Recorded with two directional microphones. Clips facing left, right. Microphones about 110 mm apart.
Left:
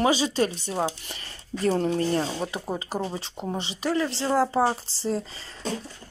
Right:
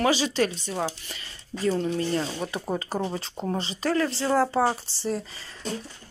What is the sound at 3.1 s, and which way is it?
Speech, 15° left (ahead or behind).